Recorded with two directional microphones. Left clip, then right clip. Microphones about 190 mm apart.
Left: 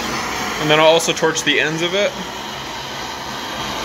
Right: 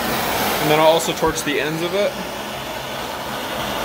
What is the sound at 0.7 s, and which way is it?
Speech, centre (ahead or behind).